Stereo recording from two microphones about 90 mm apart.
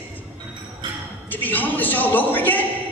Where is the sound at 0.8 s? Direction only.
55° right (ahead or behind).